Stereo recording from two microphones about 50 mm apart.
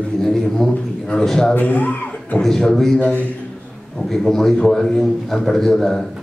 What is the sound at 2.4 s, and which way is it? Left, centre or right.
A man's voice, centre.